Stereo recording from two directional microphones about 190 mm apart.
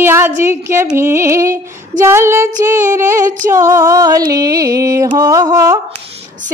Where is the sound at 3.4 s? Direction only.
15° right (ahead or behind).